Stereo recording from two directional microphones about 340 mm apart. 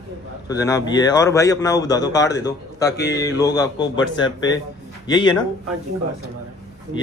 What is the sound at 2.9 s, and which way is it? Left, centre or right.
Mantra, left.